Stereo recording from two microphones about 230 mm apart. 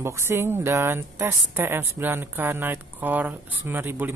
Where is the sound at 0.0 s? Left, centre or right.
Centre.